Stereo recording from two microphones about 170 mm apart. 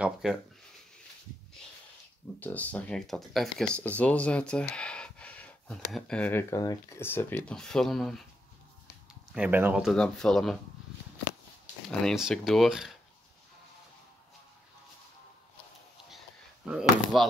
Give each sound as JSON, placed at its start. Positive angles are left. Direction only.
{"t": 0.0, "sound": "speech", "side_deg": 0}
{"t": 2.4, "sound": "speech", "side_deg": 10}
{"t": 9.3, "sound": "speech", "side_deg": -10}
{"t": 12.0, "sound": "speech", "side_deg": 0}
{"t": 16.6, "sound": "speech", "side_deg": 0}